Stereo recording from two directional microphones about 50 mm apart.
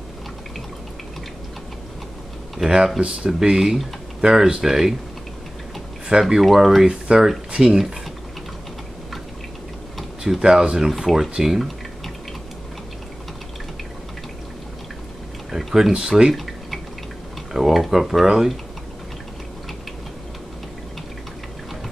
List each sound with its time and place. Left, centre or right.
2.6 s speech: centre
6.2 s speech: centre
6.9 s speech: centre
10.4 s speech: centre
15.5 s speech: centre
17.5 s speech: centre